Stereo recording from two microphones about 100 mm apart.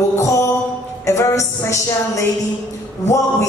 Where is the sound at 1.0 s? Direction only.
30° left (ahead or behind).